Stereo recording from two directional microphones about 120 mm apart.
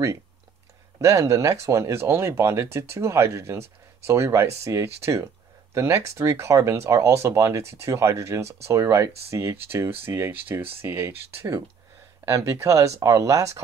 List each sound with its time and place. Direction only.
0.9 s speech: 25° right (ahead or behind)